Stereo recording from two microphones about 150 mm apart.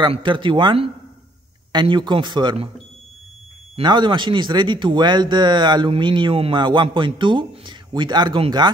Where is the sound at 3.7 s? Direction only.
30° right (ahead or behind).